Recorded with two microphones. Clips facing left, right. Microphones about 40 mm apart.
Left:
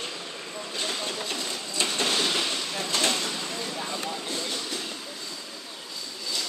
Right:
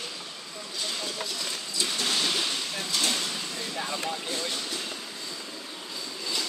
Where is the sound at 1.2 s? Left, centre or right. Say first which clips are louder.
Left 2 dB; left.